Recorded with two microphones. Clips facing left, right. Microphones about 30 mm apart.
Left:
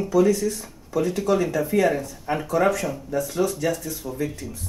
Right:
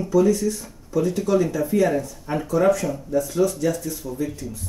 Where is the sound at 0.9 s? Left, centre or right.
Left.